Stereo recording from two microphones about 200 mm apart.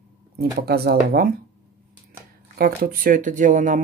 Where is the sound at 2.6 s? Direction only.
45° right (ahead or behind).